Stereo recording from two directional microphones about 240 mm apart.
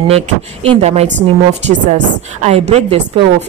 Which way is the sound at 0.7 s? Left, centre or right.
Right.